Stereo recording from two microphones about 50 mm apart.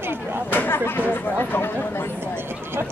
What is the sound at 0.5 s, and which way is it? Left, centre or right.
Speech, left.